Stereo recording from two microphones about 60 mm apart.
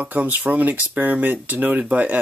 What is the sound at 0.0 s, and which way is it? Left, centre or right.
Speech, right.